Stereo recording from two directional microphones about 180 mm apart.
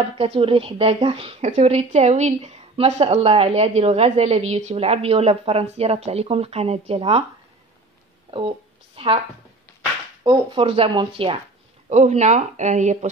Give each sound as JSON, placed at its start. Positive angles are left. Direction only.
{"t": 0.0, "sound": "speech", "side_deg": -30}
{"t": 8.3, "sound": "a sound", "side_deg": -30}
{"t": 10.2, "sound": "speech", "side_deg": -25}